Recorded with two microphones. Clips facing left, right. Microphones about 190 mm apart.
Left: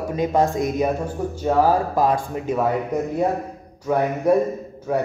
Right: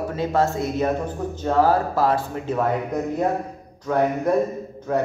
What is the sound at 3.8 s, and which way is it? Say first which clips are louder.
A man's voice: left 1 dB; 10° left (ahead or behind).